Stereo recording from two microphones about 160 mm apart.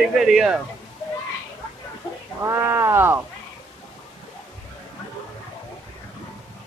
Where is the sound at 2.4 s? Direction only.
15° right (ahead or behind).